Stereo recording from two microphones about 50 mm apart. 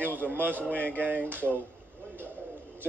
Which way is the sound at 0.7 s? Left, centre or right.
Right.